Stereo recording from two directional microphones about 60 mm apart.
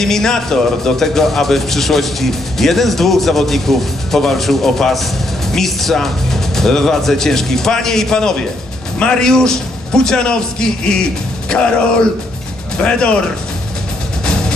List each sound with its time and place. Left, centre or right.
0.0 s speech: centre
12.7 s speech: centre